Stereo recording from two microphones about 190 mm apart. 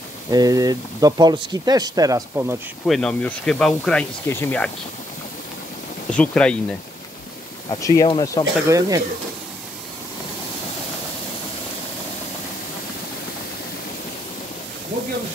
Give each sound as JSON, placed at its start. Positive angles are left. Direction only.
{"t": 0.3, "sound": "speech", "side_deg": -20}
{"t": 2.9, "sound": "speech", "side_deg": 5}
{"t": 6.0, "sound": "speech", "side_deg": 5}
{"t": 7.7, "sound": "speech", "side_deg": 15}
{"t": 8.6, "sound": "speech", "side_deg": -20}